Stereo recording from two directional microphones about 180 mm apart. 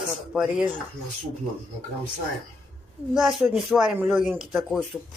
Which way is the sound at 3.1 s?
Centre (ahead or behind).